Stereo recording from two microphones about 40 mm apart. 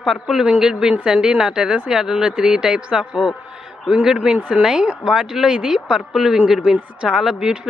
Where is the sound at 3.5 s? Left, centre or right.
Centre.